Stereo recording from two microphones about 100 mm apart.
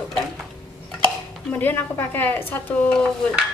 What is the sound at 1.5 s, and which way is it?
A woman's voice, 20° left (ahead or behind).